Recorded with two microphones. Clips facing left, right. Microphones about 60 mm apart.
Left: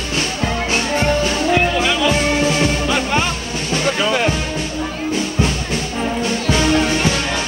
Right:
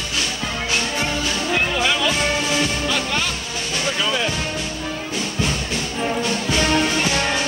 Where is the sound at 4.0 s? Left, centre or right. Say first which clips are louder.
Left 4 dB; left.